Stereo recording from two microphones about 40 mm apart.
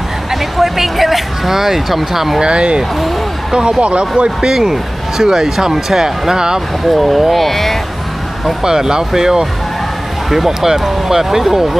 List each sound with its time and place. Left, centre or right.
0.3 s speech: centre
2.4 s speech: right
3.8 s speech: right
6.9 s speech: centre
8.6 s speech: centre